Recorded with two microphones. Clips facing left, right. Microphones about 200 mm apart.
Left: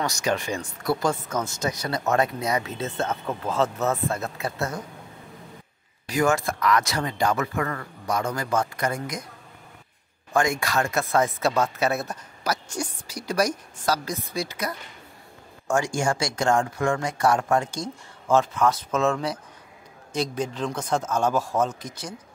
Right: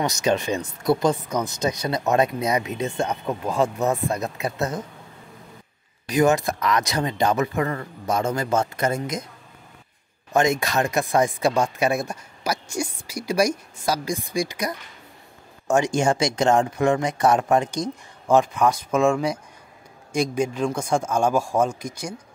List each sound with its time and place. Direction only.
0.0 s speech: 20° right (ahead or behind)
6.0 s speech: 20° right (ahead or behind)
10.3 s speech: 20° right (ahead or behind)